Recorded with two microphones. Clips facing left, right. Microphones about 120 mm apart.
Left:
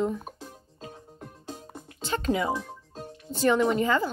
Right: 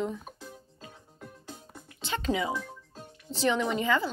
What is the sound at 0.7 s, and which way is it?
Music, 30° left (ahead or behind).